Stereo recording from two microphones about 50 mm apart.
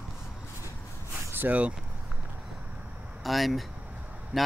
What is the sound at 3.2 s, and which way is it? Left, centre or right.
A man's voice, centre.